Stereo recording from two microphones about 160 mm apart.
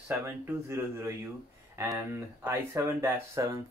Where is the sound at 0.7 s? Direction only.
15° right (ahead or behind).